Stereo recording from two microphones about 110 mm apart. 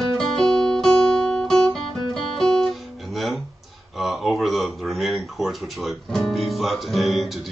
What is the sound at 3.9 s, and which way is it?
Speech, centre (ahead or behind).